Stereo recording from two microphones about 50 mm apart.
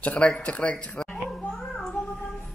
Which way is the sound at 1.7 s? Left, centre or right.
Centre.